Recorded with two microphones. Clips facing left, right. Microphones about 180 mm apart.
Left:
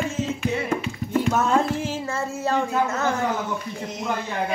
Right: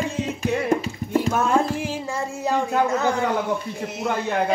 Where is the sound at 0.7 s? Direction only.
35° right (ahead or behind).